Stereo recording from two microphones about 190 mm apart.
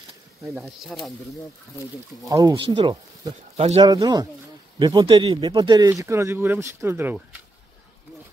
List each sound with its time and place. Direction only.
0.6 s speech: centre (ahead or behind)
2.2 s speech: 20° right (ahead or behind)
3.8 s speech: 20° right (ahead or behind)